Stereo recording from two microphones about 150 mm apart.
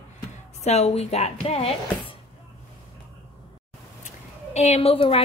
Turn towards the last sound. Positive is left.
turn(degrees=40)  # may be behind; listen again after turning